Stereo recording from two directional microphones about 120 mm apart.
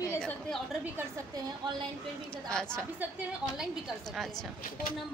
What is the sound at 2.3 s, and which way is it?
Speech, 5° left (ahead or behind).